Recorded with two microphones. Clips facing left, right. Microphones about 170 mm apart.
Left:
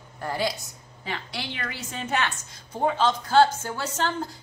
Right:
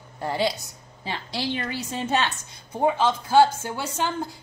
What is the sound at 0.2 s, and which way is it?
A woman's voice, 25° right (ahead or behind).